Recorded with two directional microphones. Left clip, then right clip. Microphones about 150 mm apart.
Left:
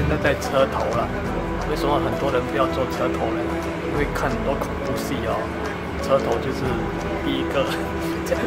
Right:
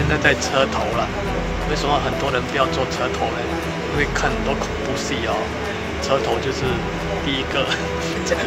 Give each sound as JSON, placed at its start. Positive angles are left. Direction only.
{"t": 0.2, "sound": "speech", "side_deg": 20}